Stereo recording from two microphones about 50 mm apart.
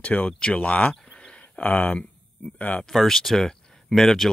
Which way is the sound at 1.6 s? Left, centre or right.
Left.